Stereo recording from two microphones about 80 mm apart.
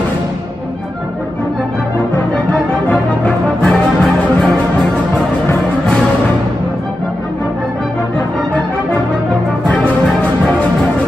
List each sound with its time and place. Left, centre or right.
3.6 s music: centre